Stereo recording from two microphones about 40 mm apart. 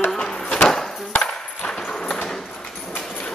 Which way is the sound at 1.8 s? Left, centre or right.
Centre.